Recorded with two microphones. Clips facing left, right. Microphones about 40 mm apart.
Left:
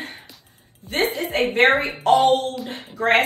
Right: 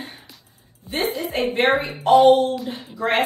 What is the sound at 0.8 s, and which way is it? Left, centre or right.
A woman's voice, left.